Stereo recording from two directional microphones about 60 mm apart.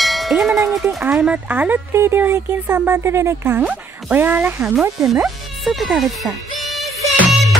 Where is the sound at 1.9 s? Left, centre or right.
Right.